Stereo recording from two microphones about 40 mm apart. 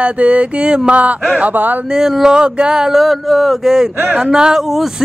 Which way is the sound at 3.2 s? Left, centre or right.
Centre.